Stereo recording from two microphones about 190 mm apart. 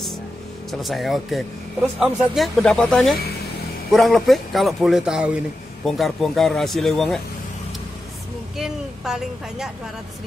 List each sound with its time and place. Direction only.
0.7 s speech: centre (ahead or behind)
8.5 s speech: centre (ahead or behind)